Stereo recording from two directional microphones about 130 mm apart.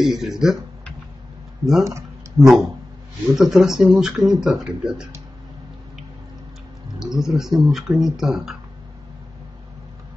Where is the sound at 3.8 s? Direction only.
5° right (ahead or behind).